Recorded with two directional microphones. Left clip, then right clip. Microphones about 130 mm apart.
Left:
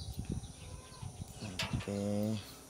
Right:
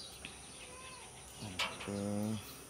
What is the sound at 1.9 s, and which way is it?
Speech, 50° left (ahead or behind).